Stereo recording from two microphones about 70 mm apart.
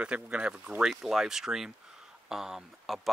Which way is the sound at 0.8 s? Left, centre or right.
Centre.